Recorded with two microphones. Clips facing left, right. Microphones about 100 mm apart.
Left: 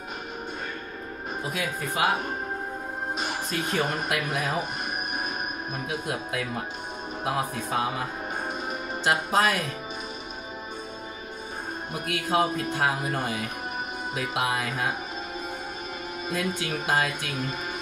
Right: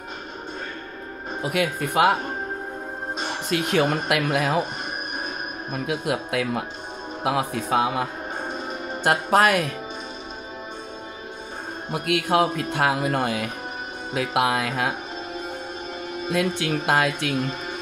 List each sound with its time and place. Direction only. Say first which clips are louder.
1.4 s speech: right 8 dB; 65° right (ahead or behind)
3.4 s speech: right 8 dB; 85° right
5.9 s speech: right 7 dB; 75° right (ahead or behind)
9.0 s speech: right 5 dB; 60° right (ahead or behind)
11.9 s speech: right 5 dB; 70° right (ahead or behind)
16.3 s speech: right 6 dB; 65° right (ahead or behind)